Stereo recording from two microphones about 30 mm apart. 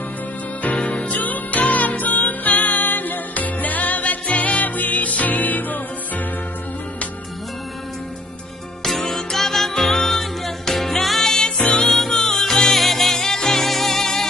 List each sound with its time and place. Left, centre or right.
0.7 s music: left
8.8 s music: centre
13.1 s music: centre